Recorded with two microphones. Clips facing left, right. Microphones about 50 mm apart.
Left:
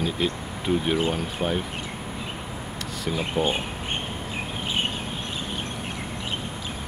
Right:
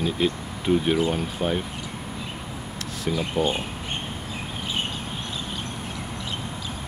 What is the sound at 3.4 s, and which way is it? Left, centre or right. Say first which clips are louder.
Speech: even; left.